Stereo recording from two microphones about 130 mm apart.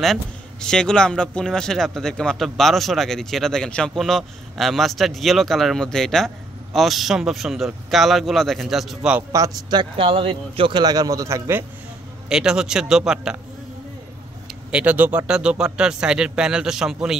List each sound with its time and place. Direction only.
0.0 s speech: 5° left (ahead or behind)
9.3 s a man's voice: 30° right (ahead or behind)
12.3 s speech: 5° right (ahead or behind)
14.5 s a man's voice: 10° right (ahead or behind)